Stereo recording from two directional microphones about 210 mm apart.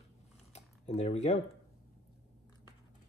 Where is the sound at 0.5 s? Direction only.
30° left (ahead or behind).